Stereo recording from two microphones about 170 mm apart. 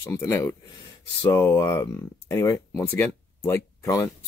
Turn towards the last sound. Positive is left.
turn(degrees=20)  # may be behind; listen again after turning